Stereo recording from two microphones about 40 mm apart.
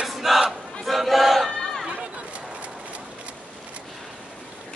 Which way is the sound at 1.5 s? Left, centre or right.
Centre.